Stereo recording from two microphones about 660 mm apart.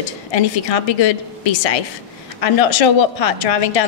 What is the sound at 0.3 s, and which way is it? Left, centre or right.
A woman's voice, left.